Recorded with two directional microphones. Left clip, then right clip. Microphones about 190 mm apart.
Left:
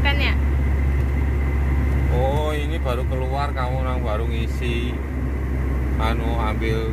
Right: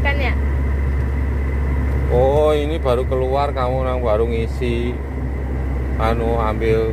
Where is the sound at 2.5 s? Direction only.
65° right (ahead or behind).